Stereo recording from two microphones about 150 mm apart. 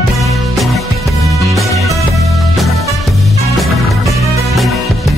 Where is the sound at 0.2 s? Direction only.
Centre (ahead or behind).